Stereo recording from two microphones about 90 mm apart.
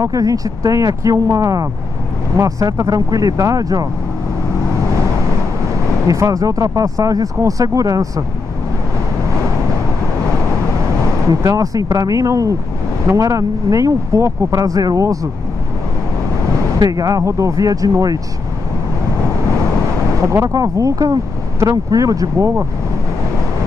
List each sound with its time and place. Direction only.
0.0 s speech: 40° right (ahead or behind)
6.0 s speech: 35° right (ahead or behind)
11.2 s speech: 40° right (ahead or behind)
16.8 s speech: 45° right (ahead or behind)
20.2 s speech: 35° right (ahead or behind)